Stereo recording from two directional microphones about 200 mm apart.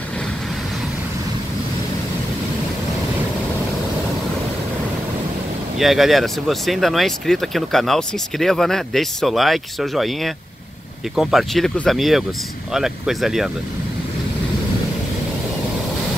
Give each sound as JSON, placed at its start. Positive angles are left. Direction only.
{"t": 5.8, "sound": "speech", "side_deg": 0}